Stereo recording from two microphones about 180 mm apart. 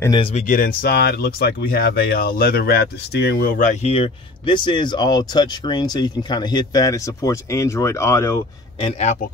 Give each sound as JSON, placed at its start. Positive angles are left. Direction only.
{"t": 0.5, "sound": "speech", "side_deg": 55}
{"t": 3.5, "sound": "speech", "side_deg": 40}
{"t": 8.8, "sound": "speech", "side_deg": 40}